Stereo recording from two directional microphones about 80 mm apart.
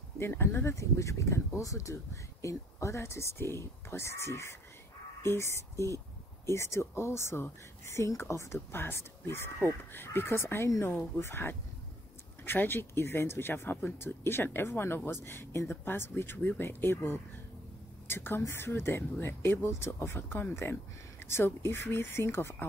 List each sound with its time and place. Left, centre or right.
0.2 s speech: left